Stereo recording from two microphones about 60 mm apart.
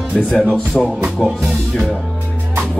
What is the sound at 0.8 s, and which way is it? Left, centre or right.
Speech, centre.